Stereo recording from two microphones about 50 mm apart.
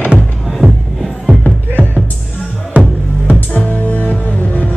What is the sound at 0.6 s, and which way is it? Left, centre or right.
Music, right.